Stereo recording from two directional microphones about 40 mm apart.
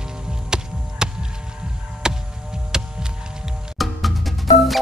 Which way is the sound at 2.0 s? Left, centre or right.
Centre.